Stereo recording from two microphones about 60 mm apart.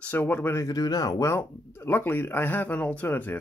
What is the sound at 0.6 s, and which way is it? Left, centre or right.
Speech, left.